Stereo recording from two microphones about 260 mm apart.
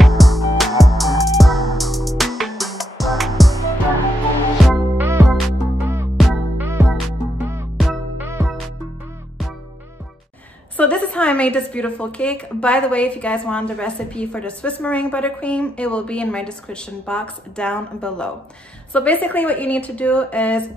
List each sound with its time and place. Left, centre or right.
0.0 s music: centre
4.6 s music: centre
10.8 s a sound: centre
11.7 s a woman's voice: centre